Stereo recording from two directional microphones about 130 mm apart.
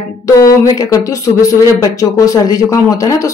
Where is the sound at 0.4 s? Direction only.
25° left (ahead or behind).